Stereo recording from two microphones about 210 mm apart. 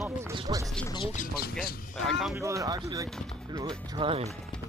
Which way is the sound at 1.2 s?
45° left (ahead or behind).